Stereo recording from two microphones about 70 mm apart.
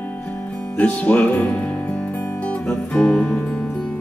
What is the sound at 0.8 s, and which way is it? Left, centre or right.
Music, centre.